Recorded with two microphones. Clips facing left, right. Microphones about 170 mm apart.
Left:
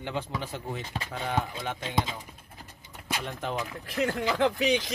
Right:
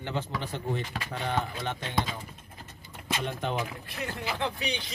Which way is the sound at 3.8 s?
90° left.